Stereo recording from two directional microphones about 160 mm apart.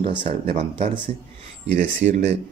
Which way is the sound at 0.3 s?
40° right (ahead or behind).